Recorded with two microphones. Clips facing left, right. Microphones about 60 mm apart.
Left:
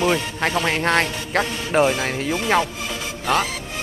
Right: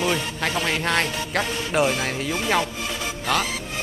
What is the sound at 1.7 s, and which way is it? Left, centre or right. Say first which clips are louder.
Speech: left 4 dB; left.